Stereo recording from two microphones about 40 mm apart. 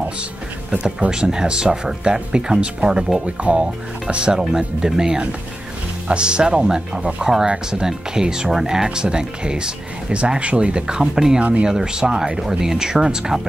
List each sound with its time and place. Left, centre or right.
0.7 s speech: right
3.4 s speech: right
4.1 s speech: right